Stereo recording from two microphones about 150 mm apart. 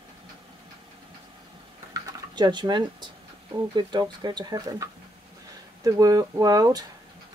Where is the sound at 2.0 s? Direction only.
30° right (ahead or behind).